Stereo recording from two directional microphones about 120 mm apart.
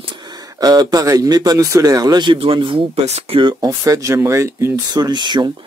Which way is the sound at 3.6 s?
30° right (ahead or behind).